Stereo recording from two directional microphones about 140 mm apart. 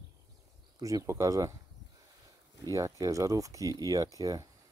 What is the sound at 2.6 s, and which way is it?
Speech, 25° right (ahead or behind).